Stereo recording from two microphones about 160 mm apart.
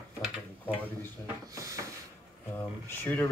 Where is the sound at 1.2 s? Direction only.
20° right (ahead or behind).